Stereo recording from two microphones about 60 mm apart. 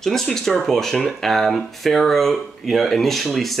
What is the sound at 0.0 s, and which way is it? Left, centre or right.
Speech, centre.